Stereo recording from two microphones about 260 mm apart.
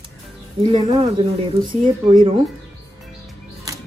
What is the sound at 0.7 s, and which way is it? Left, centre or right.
Speech, right.